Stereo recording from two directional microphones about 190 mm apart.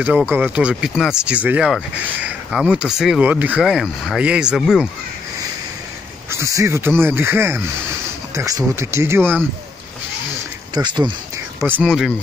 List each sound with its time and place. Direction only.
0.0 s speech: 5° right (ahead or behind)
6.3 s speech: 15° right (ahead or behind)
10.7 s speech: 25° right (ahead or behind)
11.6 s speech: 10° right (ahead or behind)